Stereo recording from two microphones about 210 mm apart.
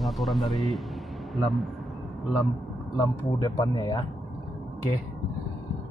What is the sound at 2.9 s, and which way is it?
Speech, 15° left (ahead or behind).